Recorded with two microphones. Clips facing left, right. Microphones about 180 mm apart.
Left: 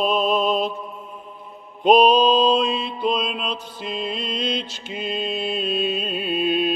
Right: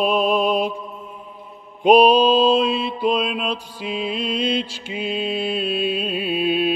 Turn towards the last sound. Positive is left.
turn(degrees=-5)  # may be behind; listen again after turning